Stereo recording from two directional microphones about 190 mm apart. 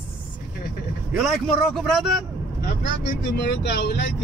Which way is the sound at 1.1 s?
Centre (ahead or behind).